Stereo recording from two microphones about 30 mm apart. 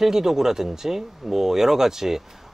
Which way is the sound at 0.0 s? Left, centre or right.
Centre.